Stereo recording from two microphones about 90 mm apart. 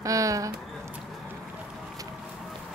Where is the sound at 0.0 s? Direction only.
40° right (ahead or behind).